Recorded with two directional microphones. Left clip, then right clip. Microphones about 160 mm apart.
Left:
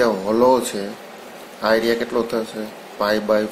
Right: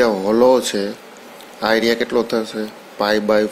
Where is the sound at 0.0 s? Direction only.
40° right (ahead or behind).